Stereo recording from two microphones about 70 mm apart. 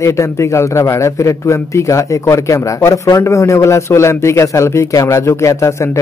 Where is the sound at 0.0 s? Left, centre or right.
Left.